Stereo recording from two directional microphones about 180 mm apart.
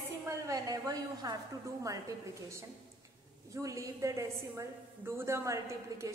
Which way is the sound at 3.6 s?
20° right (ahead or behind).